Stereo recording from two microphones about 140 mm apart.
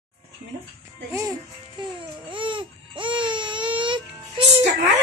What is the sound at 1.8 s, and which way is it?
Baby cry, 35° right (ahead or behind).